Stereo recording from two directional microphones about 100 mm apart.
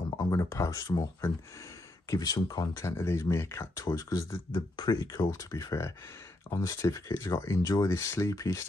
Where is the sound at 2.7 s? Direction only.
25° left (ahead or behind).